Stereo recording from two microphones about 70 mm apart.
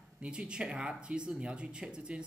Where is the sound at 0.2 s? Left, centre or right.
Centre.